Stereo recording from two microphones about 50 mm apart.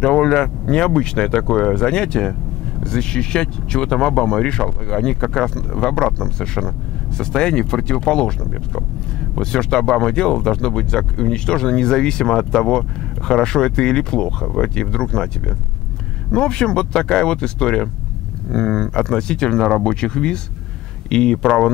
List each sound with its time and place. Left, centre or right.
0.0 s speech: centre